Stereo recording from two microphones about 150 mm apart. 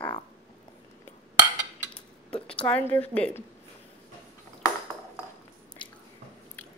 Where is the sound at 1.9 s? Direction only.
5° left (ahead or behind).